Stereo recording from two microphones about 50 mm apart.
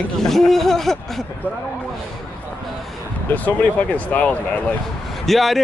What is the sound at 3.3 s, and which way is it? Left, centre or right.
Speech, left.